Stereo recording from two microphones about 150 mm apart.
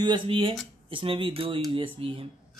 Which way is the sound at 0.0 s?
35° right (ahead or behind).